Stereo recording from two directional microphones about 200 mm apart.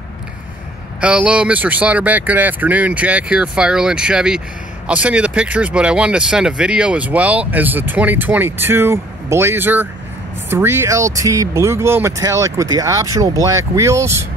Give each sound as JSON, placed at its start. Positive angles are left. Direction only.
{"t": 1.0, "sound": "speech", "side_deg": -5}